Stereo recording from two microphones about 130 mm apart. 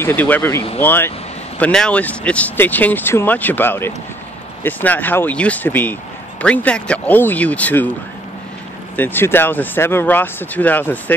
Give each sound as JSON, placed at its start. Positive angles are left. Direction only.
{"t": 0.0, "sound": "speech", "side_deg": 15}
{"t": 8.9, "sound": "speech", "side_deg": 15}